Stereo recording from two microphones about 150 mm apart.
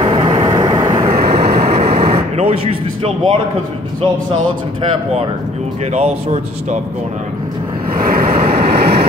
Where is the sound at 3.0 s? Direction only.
35° right (ahead or behind).